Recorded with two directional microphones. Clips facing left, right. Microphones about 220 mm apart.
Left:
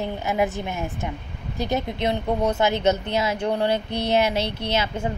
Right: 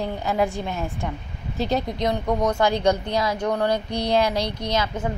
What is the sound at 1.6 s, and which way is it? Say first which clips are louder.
A woman's voice: right 1 dB; 20° left (ahead or behind).